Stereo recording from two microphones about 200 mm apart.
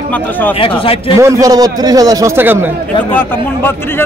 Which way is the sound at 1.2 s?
15° right (ahead or behind).